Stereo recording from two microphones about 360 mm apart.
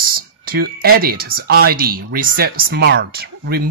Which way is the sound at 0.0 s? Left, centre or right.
Right.